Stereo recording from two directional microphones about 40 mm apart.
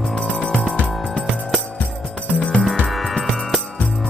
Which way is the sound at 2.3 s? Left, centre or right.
Left.